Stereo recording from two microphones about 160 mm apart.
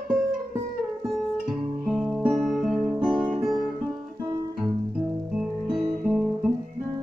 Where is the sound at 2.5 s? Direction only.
Centre (ahead or behind).